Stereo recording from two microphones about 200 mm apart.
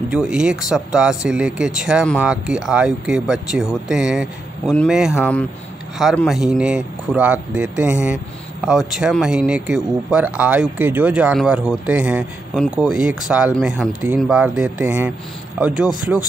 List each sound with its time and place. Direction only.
0.1 s a man's voice: 5° right (ahead or behind)